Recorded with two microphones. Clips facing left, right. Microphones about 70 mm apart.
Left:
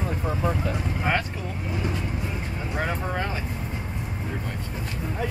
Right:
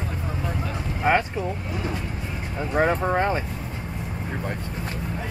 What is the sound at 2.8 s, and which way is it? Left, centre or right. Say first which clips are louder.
Speech: right 8 dB; right.